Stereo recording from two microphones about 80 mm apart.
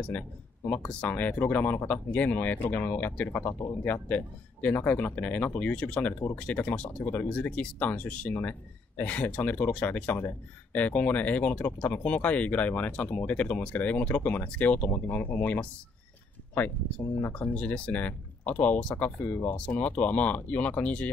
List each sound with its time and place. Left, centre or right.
0.1 s speech: centre
17.2 s speech: left